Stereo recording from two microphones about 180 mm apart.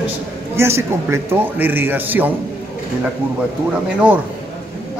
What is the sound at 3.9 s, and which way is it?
Speech, 5° right (ahead or behind).